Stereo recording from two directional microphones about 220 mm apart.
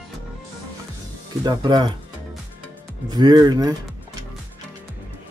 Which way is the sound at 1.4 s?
20° right (ahead or behind).